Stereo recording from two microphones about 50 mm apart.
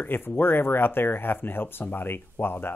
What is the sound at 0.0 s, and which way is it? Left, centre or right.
Speech, left.